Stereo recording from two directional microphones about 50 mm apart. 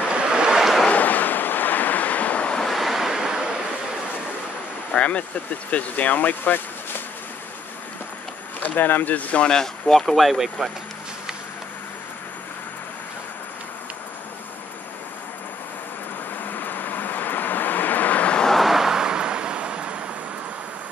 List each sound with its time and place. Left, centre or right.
0.1 s waves: centre
0.9 s waves: left
2.6 s waves: centre
4.9 s vehicle: left
5.7 s speech: left
8.5 s speech: left
9.5 s speech: centre
16.4 s vehicle: left
18.6 s vehicle: centre; by 20.0 s right